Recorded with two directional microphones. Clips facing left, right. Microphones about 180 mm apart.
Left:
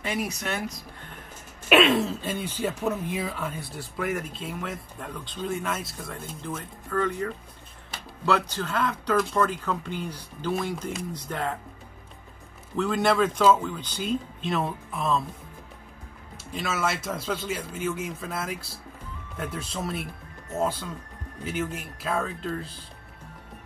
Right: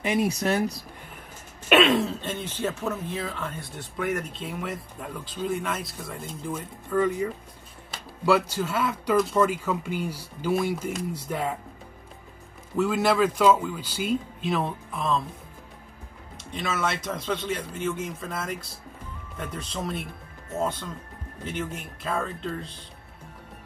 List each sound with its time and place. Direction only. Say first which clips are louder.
0.0 s speech: right 5 dB; 20° right (ahead or behind)
0.3 s speech: right 7 dB; 35° right (ahead or behind)
1.7 s speech: even; centre (ahead or behind)
6.4 s speech: right 4 dB; 10° right (ahead or behind)
12.7 s speech: right 1 dB; 5° right (ahead or behind)
16.5 s speech: even; 5° left (ahead or behind)